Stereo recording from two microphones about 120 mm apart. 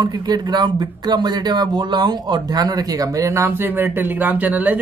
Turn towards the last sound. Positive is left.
turn(degrees=-15)  # may be behind; listen again after turning